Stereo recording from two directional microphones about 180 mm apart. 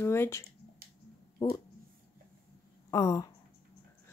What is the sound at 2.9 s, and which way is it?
Speech, 20° left (ahead or behind).